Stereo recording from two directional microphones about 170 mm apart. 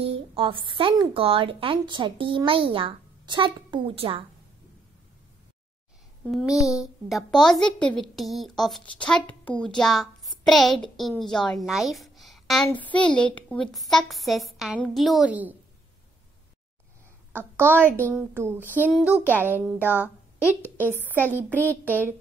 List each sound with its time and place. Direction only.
0.0 s a woman's voice: 35° right (ahead or behind)
6.2 s a woman's voice: centre (ahead or behind)
17.3 s a child's voice: 10° right (ahead or behind)
18.9 s a woman's voice: centre (ahead or behind)
19.1 s a child's voice: 10° right (ahead or behind)
20.4 s a woman's voice: 15° left (ahead or behind)
21.3 s a child's voice: 10° right (ahead or behind)